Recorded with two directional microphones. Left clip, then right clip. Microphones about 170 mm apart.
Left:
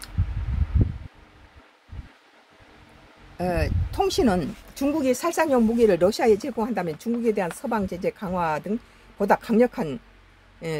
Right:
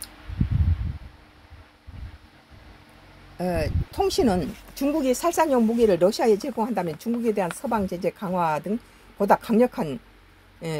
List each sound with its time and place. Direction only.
3.3 s speech: 20° left (ahead or behind); by 9.9 s 5° left (ahead or behind)